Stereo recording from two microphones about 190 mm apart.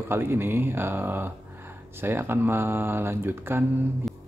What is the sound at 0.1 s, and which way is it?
Speech, 10° right (ahead or behind).